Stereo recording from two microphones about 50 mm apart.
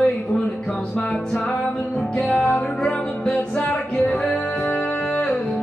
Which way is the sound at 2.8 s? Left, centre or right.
Centre.